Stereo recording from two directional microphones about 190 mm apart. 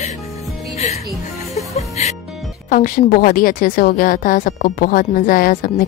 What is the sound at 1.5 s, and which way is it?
Music, 35° left (ahead or behind).